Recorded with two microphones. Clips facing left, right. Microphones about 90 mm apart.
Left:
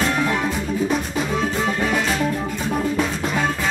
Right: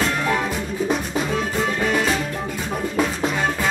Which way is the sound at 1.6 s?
Centre (ahead or behind).